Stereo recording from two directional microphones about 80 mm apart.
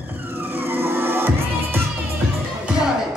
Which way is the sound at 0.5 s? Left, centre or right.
Right.